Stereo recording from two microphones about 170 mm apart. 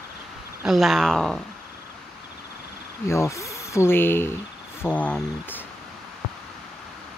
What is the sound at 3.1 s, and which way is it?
Speech, 15° left (ahead or behind).